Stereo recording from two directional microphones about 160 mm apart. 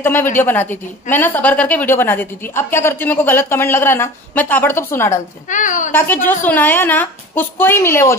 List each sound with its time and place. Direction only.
0.0 s a woman's voice: 15° left (ahead or behind)
5.5 s a woman's voice: 55° left (ahead or behind)
5.9 s a woman's voice: 15° left (ahead or behind)